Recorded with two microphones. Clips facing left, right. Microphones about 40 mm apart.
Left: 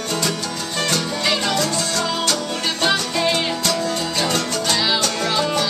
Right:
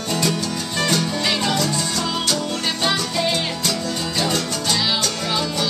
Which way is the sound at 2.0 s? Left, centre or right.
Centre.